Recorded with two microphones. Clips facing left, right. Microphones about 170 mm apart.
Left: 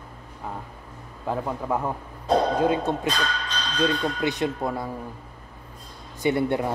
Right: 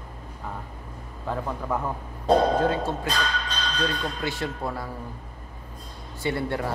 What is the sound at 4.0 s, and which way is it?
Speech, 20° left (ahead or behind).